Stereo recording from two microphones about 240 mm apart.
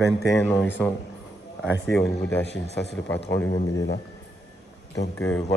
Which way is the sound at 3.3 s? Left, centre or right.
Centre.